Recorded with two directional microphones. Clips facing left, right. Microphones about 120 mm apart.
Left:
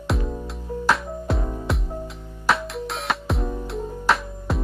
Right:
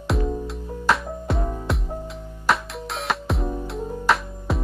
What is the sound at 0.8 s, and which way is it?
Music, centre (ahead or behind).